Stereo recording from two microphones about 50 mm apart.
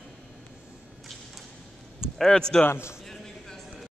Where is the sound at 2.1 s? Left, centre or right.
Centre.